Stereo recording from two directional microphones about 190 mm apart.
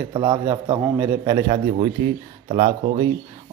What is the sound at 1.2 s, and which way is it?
Speech, 20° right (ahead or behind).